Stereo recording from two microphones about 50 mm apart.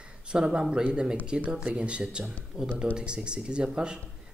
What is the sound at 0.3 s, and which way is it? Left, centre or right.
Speech, centre.